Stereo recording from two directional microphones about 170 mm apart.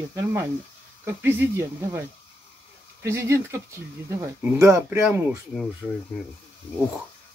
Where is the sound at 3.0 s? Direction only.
15° right (ahead or behind).